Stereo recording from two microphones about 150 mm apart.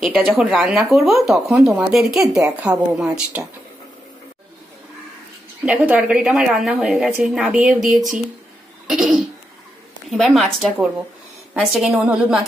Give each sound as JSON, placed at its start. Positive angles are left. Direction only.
{"t": 0.0, "sound": "a woman's voice", "side_deg": -10}
{"t": 1.7, "sound": "speech", "side_deg": -15}
{"t": 2.0, "sound": "a woman's voice", "side_deg": 0}
{"t": 2.4, "sound": "a woman's voice", "side_deg": -20}
{"t": 2.9, "sound": "a woman's voice", "side_deg": -5}
{"t": 5.7, "sound": "a woman's voice", "side_deg": -10}
{"t": 8.8, "sound": "cough", "side_deg": -5}
{"t": 10.0, "sound": "a woman's voice", "side_deg": 0}